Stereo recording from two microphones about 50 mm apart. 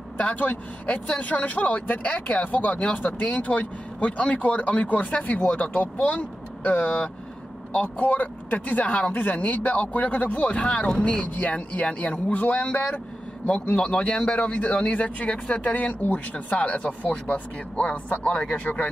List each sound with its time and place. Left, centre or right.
0.2 s speech: left
11.2 s speech: left
11.5 s speech: left
13.5 s speech: left